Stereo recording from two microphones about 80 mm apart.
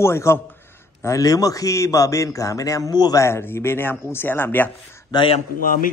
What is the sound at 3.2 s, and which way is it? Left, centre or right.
Speech, left.